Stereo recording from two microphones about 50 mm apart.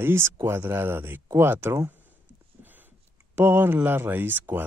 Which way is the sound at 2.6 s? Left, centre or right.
Right.